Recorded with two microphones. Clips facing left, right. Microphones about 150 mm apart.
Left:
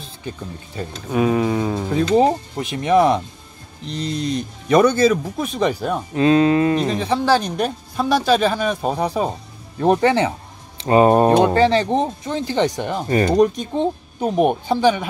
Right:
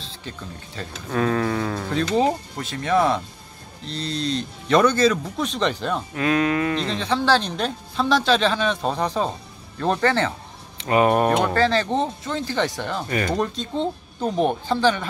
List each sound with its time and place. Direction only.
0.0 s speech: 15° left (ahead or behind)
6.1 s speech: 25° left (ahead or behind)
6.8 s speech: 10° left (ahead or behind)
10.8 s speech: 30° left (ahead or behind); by 15.0 s 10° left (ahead or behind)